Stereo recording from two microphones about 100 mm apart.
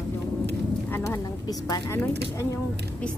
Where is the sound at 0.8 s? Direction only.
25° left (ahead or behind).